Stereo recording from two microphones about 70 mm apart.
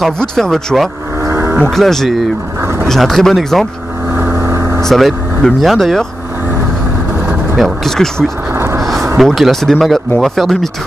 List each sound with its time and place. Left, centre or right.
0.2 s speech: centre
1.2 s cattle: right
1.7 s speech: centre
4.1 s vehicle: right
4.4 s vehicle: right
4.8 s speech: centre
7.5 s speech: centre
8.5 s a sound: right
8.8 s speech: centre